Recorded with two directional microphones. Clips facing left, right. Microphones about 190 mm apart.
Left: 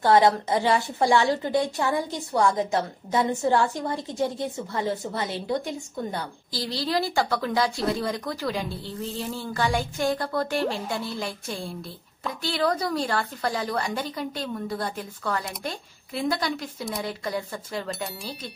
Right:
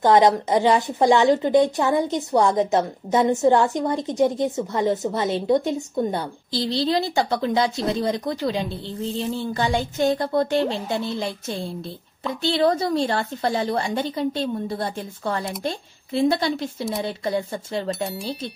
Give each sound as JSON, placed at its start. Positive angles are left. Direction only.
{"t": 0.0, "sound": "a woman's voice", "side_deg": -20}